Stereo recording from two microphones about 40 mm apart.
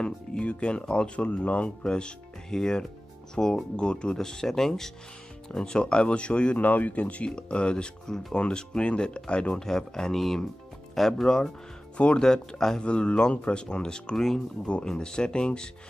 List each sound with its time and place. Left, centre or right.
0.0 s speech: left
1.9 s speech: left
6.6 s speech: left
7.2 s speech: left
9.6 s speech: centre
12.8 s speech: left; by 14.4 s centre
14.7 s speech: left